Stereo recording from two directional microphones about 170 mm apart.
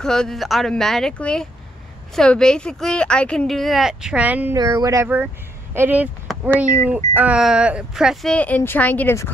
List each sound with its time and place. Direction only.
0.0 s speech: 5° left (ahead or behind)
4.6 s speech: 20° right (ahead or behind); by 9.3 s 15° left (ahead or behind)